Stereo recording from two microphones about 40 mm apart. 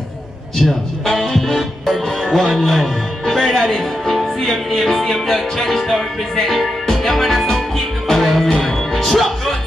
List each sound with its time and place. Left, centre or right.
0.6 s speech: centre
8.5 s music: centre